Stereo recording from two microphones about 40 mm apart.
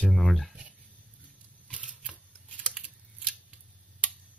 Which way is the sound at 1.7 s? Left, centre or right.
Right.